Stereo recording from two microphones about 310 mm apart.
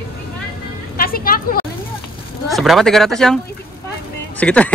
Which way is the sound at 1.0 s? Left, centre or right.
Left.